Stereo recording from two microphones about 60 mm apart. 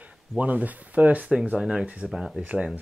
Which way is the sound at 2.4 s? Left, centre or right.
Right.